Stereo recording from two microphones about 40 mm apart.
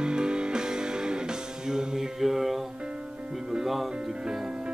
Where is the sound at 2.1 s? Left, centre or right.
Centre.